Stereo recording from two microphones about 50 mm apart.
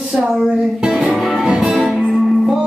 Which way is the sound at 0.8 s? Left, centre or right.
Centre.